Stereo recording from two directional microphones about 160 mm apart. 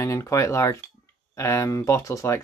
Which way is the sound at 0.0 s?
20° left (ahead or behind).